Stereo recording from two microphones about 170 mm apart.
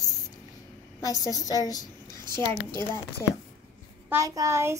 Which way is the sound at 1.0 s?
20° left (ahead or behind).